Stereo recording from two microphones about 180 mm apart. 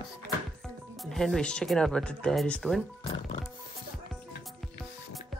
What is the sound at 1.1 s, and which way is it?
Speech, 5° left (ahead or behind).